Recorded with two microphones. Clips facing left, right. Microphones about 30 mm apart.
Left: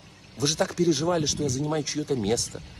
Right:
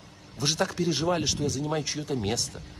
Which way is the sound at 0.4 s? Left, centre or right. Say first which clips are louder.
Left 2 dB; centre.